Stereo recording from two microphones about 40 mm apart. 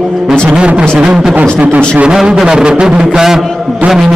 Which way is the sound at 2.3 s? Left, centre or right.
Centre.